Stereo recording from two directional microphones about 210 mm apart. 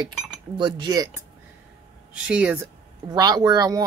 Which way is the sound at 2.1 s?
5° right (ahead or behind).